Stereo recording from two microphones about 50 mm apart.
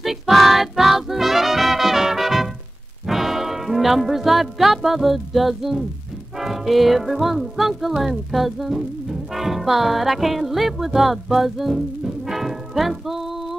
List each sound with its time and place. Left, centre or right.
0.0 s music: centre